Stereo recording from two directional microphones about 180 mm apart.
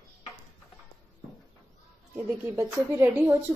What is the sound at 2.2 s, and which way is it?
Speech, 10° right (ahead or behind).